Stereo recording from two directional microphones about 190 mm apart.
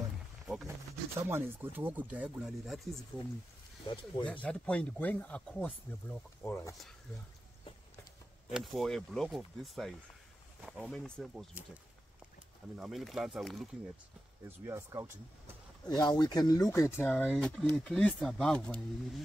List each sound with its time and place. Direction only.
1.2 s speech: 10° right (ahead or behind)
3.8 s speech: 25° left (ahead or behind)
4.3 s speech: 5° left (ahead or behind)
8.5 s speech: centre (ahead or behind)
14.7 s speech: 15° right (ahead or behind)
16.0 s speech: 20° left (ahead or behind); by 19.2 s 5° left (ahead or behind)